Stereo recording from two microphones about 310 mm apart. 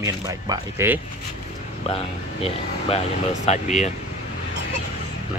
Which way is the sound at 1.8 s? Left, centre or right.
Centre.